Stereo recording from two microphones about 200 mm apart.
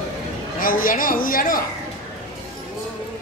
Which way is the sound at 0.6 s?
45° left (ahead or behind).